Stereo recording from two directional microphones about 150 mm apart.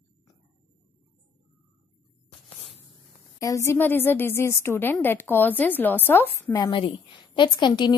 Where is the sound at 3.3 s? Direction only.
20° left (ahead or behind).